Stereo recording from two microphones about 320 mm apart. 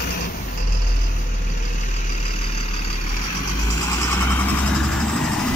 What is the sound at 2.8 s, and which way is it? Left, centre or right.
Vehicle, left.